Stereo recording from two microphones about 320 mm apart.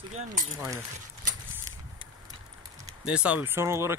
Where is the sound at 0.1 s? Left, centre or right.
Right.